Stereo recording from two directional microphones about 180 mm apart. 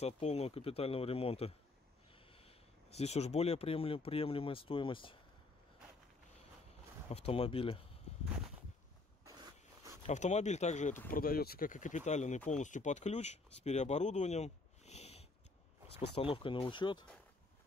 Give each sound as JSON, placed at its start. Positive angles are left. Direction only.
{"t": 0.0, "sound": "speech", "side_deg": 35}
{"t": 7.1, "sound": "speech", "side_deg": 35}
{"t": 10.0, "sound": "speech", "side_deg": 40}
{"t": 11.1, "sound": "speech", "side_deg": 55}